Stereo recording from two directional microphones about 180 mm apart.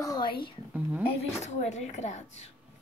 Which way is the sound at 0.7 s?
10° right (ahead or behind).